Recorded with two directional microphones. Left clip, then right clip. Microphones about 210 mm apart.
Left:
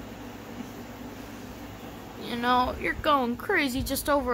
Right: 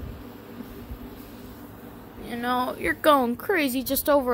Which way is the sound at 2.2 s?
5° right (ahead or behind).